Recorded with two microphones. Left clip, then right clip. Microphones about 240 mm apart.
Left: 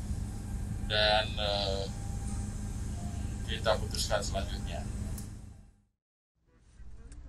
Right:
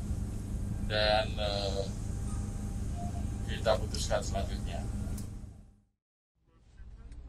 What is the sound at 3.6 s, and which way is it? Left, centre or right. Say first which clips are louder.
Speech: right 1 dB; left.